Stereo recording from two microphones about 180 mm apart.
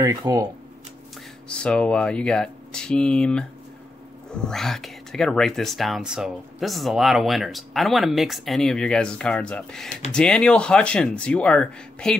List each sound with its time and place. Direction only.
0.0 s speech: 20° right (ahead or behind)
1.5 s speech: 5° left (ahead or behind)